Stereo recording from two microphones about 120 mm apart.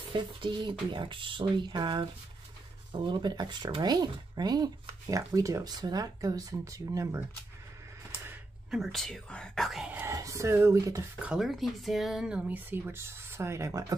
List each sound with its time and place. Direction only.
0.1 s speech: 40° right (ahead or behind)
8.6 s speech: centre (ahead or behind)
10.0 s speech: 25° right (ahead or behind)
11.1 s speech: 5° right (ahead or behind); by 13.9 s 25° right (ahead or behind)